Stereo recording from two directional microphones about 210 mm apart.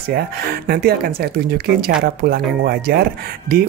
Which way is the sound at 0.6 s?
50° right (ahead or behind).